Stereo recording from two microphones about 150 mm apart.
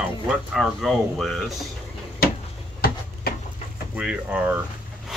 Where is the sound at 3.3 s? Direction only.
90° left.